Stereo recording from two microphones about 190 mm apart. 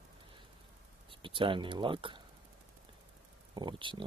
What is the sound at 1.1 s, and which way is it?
Speech, 25° right (ahead or behind).